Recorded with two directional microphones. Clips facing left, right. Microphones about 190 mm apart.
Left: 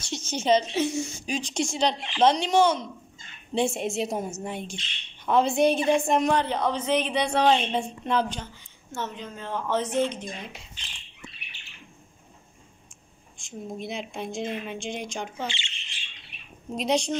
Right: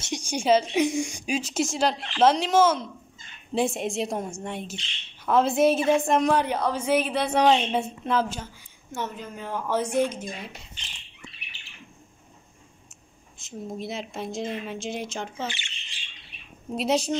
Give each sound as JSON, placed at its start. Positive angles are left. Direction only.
{"t": 0.0, "sound": "a woman's voice", "side_deg": -15}
{"t": 13.4, "sound": "speech", "side_deg": 0}
{"t": 15.4, "sound": "speech", "side_deg": 25}
{"t": 16.7, "sound": "speech", "side_deg": -5}